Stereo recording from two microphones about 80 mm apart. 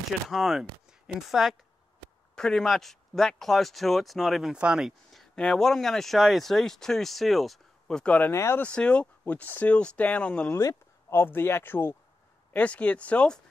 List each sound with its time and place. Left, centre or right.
0.3 s speech: centre
5.1 s a sound: centre
5.4 s speech: centre
8.0 s speech: centre
8.3 s speech: left
8.5 s speech: centre
10.5 s speech: left
12.5 s speech: centre